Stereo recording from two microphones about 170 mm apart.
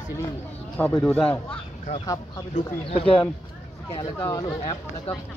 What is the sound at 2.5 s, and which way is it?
Speech, 35° left (ahead or behind).